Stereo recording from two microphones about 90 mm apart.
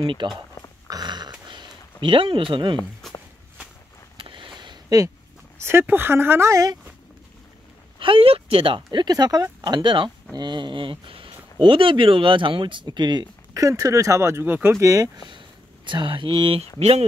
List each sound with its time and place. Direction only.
0.0 s speech: 75° right (ahead or behind)
0.8 s dog: 50° right (ahead or behind)
1.5 s a sound: 65° right (ahead or behind)
3.0 s walk: 5° left (ahead or behind)
4.2 s a sound: 65° right (ahead or behind)
4.8 s speech: 40° right (ahead or behind)
5.6 s speech: 25° right (ahead or behind)
8.0 s speech: 80° right; by 12.8 s 65° right (ahead or behind)
12.8 s speech: 55° right (ahead or behind)
13.5 s speech: 40° right (ahead or behind)
14.4 s speech: 25° right (ahead or behind)
15.1 s speech: 65° right (ahead or behind); by 16.6 s 80° right